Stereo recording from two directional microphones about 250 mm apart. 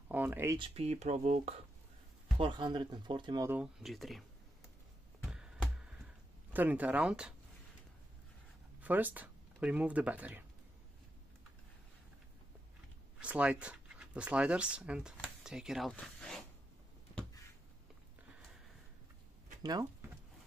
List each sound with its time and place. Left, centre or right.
0.1 s speech: centre
0.6 s speech: right; by 4.2 s centre
5.2 s music: centre
6.5 s speech: centre
8.8 s speech: centre
13.2 s speech: centre
17.1 s a sound: centre
19.6 s speech: centre